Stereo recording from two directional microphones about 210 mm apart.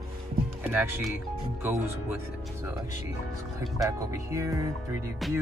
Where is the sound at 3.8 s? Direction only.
15° right (ahead or behind).